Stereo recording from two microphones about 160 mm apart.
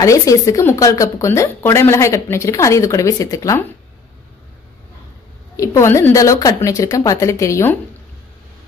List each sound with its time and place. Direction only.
0.0 s a woman's voice: 20° left (ahead or behind)
5.6 s a woman's voice: 20° left (ahead or behind)